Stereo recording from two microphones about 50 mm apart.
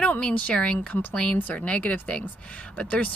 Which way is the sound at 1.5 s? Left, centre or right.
Left.